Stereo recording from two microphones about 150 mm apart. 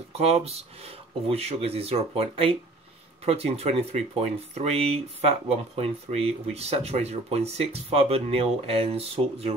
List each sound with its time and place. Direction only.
0.1 s speech: 45° right (ahead or behind)